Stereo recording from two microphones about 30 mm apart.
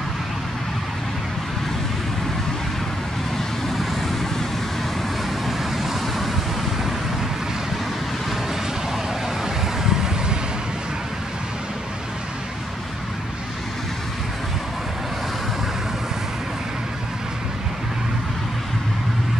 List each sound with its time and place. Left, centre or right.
3.3 s vehicle: centre
5.5 s vehicle: centre
9.4 s vehicle: centre